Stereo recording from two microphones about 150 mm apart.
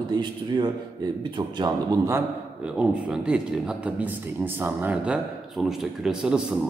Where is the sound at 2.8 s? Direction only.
5° right (ahead or behind).